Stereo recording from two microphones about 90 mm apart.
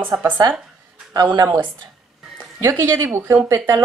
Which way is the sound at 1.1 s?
45° right (ahead or behind).